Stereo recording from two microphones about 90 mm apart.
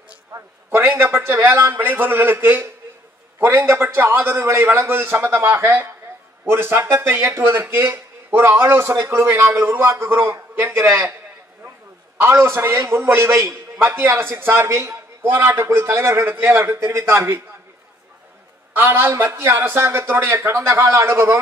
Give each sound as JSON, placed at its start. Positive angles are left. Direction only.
{"t": 0.3, "sound": "a man's voice", "side_deg": -30}
{"t": 12.2, "sound": "a man's voice", "side_deg": -25}
{"t": 18.8, "sound": "a man's voice", "side_deg": -25}